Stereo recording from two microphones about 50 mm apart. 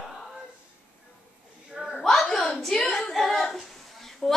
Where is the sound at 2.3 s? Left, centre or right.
Centre.